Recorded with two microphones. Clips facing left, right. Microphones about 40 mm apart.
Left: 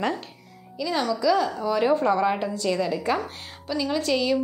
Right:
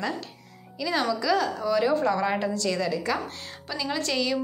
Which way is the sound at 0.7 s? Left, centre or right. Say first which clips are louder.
Left 1 dB; centre.